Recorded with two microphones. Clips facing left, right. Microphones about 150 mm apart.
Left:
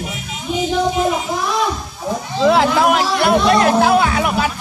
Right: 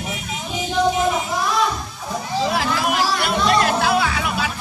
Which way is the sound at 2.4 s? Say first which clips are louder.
Left 9 dB; 65° left (ahead or behind).